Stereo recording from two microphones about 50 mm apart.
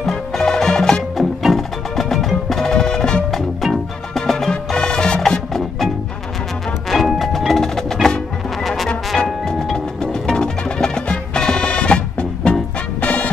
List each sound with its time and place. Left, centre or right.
0.1 s music: centre
4.5 s music: centre
6.9 s music: centre; by 13.3 s left